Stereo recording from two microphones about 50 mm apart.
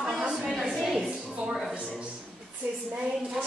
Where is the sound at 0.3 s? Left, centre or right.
Centre.